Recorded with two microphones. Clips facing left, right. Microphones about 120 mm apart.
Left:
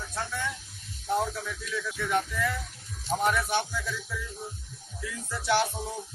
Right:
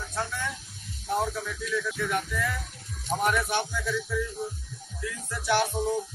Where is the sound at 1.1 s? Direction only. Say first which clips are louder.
Even; centre (ahead or behind).